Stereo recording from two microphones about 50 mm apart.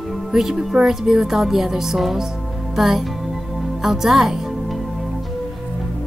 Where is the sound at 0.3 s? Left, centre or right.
Centre.